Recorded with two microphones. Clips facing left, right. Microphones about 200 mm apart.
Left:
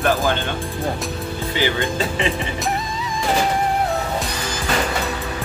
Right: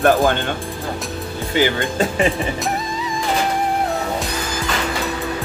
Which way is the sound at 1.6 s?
45° right (ahead or behind).